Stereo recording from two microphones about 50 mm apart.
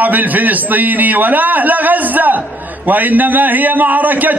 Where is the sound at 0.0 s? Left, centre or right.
Right.